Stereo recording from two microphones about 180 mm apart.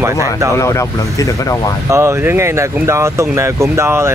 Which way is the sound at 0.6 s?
15° left (ahead or behind).